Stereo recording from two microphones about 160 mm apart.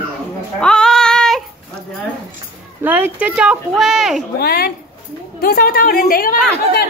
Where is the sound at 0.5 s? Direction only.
5° left (ahead or behind).